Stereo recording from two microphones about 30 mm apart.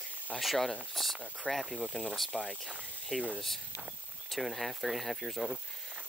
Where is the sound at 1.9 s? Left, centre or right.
Left.